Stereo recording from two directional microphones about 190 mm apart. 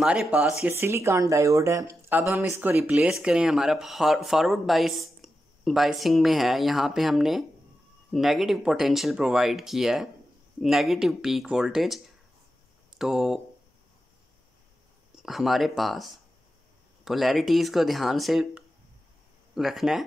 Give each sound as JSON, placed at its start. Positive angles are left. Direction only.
{"t": 0.0, "sound": "speech", "side_deg": -5}
{"t": 15.1, "sound": "speech", "side_deg": 0}